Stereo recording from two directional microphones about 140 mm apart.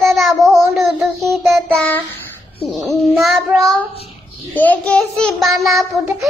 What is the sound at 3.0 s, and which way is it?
Child singing, centre (ahead or behind).